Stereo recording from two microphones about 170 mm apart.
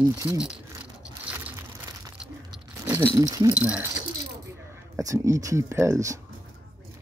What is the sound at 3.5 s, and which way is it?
Speech, 10° right (ahead or behind).